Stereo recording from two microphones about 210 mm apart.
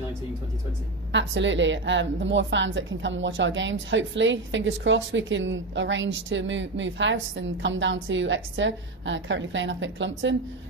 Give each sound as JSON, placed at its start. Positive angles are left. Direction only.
{"t": 1.1, "sound": "a woman's voice", "side_deg": -60}